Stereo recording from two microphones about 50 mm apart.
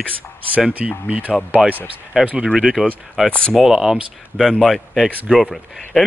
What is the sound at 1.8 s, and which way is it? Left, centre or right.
Speech, centre.